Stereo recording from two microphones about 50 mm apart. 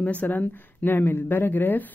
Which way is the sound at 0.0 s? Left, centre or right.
Left.